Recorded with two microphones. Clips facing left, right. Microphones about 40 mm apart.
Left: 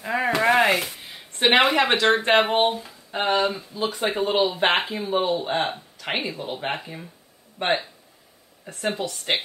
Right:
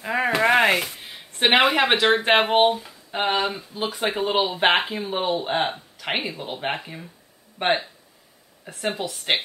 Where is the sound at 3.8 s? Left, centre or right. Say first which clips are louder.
Even; centre.